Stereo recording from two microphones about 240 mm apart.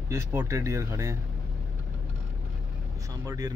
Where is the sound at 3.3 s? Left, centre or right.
Centre.